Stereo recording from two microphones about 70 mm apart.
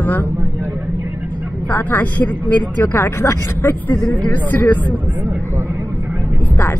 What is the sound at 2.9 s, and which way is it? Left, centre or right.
Speech, left.